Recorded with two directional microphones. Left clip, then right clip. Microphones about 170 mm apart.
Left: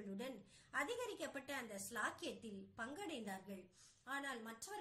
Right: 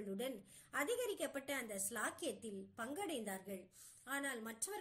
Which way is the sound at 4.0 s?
30° right (ahead or behind).